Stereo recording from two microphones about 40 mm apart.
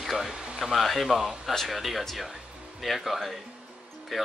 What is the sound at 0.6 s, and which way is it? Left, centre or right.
Speech, centre.